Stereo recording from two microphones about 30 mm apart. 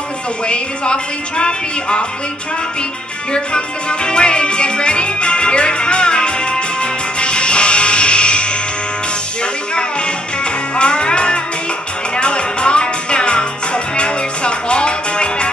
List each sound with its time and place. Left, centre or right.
1.4 s speech: left
3.3 s music: left
10.8 s music: left